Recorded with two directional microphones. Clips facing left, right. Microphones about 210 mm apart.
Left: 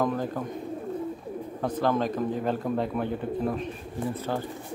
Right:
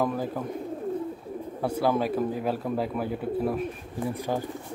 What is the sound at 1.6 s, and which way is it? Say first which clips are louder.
Speech: right 1 dB; 10° right (ahead or behind).